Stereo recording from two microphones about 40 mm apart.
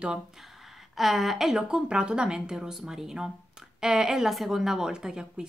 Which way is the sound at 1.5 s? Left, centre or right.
Right.